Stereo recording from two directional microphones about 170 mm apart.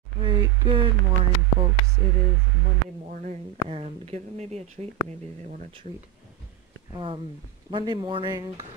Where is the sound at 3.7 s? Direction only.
35° right (ahead or behind).